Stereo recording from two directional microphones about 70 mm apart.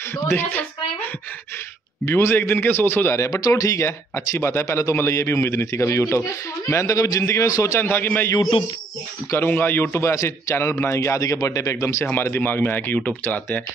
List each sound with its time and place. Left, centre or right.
0.3 s speech: left
2.0 s speech: left
3.3 s a man's voice: left
7.4 s a man's voice: left
7.7 s speech: left
9.5 s speech: left
10.0 s a man's voice: left
12.1 s speech: left